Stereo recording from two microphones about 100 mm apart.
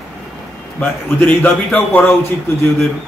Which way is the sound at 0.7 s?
15° left (ahead or behind).